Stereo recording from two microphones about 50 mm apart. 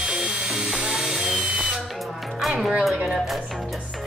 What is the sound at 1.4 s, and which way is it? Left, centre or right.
Drill, centre.